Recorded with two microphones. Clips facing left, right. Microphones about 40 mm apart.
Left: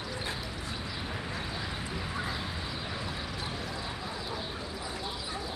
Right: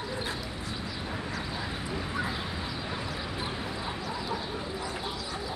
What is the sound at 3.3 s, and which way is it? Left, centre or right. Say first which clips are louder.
Chicken: right 2 dB; centre.